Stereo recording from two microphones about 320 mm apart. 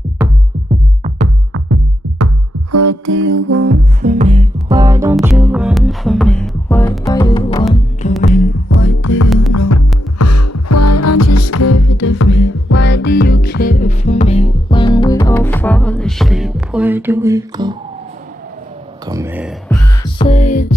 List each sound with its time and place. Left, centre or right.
1.0 s music: right
1.5 s music: right
2.7 s music: right
3.5 s music: right; by 8.2 s left
8.6 s music: left
9.5 s music: left; by 17.7 s centre
19.0 s a sound: centre
20.0 s music: centre